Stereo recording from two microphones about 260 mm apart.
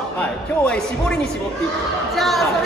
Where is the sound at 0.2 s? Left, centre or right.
Centre.